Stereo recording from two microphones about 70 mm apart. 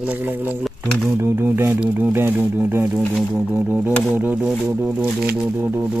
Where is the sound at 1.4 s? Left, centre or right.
Right.